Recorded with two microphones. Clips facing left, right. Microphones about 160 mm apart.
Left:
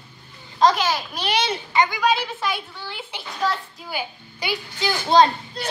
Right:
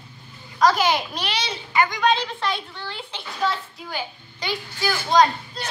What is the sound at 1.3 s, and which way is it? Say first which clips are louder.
Speech: left 9 dB; 50° left (ahead or behind).